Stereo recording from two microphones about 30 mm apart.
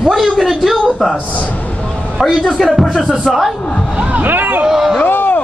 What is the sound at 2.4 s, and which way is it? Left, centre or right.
Speech, centre.